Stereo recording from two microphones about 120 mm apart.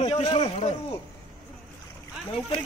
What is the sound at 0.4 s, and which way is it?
Speech, 55° left (ahead or behind).